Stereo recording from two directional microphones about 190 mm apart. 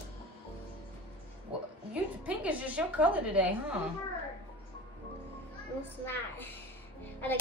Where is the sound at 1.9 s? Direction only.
5° right (ahead or behind).